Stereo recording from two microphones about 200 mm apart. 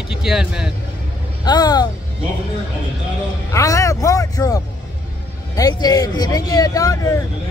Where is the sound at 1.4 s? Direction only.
20° left (ahead or behind).